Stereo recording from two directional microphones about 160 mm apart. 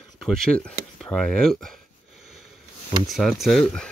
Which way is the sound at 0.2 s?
5° left (ahead or behind).